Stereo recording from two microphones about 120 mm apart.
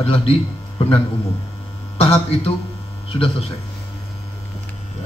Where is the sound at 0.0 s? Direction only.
55° left (ahead or behind).